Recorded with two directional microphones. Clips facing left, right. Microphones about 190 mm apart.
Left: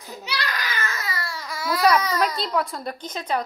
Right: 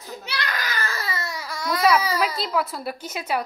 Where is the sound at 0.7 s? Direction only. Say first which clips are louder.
Right 1 dB; 35° right (ahead or behind).